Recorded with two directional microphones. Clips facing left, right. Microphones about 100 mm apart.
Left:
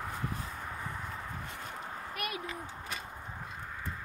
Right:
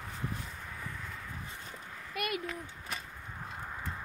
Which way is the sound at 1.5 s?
50° left (ahead or behind).